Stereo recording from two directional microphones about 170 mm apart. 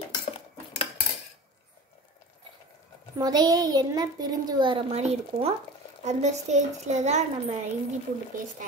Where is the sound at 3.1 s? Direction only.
20° right (ahead or behind); by 7.2 s 45° right (ahead or behind).